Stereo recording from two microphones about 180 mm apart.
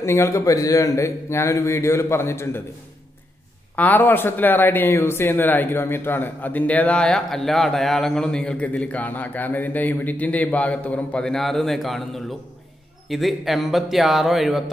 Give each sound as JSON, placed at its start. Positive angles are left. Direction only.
{"t": 0.0, "sound": "speech", "side_deg": 15}
{"t": 3.7, "sound": "speech", "side_deg": 10}